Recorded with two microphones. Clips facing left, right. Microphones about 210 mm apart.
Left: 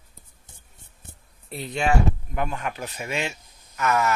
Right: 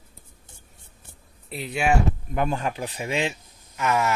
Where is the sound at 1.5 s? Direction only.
Centre (ahead or behind).